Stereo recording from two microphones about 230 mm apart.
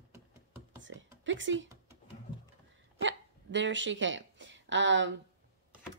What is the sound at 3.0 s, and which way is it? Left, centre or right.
Speech, right.